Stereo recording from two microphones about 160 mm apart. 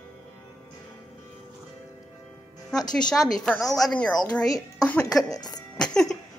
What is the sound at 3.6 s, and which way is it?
Speech, 20° left (ahead or behind).